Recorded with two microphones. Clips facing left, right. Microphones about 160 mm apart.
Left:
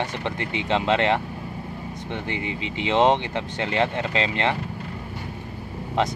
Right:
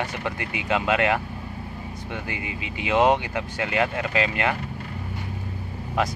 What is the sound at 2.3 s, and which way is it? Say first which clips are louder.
Speech: left 4 dB; 25° left (ahead or behind).